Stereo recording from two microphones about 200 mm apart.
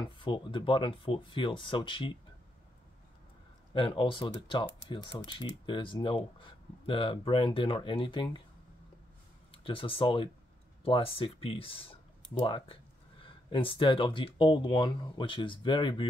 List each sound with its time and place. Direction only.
0.0 s speech: 25° left (ahead or behind)
3.7 s speech: 25° left (ahead or behind)
9.5 s speech: 25° left (ahead or behind)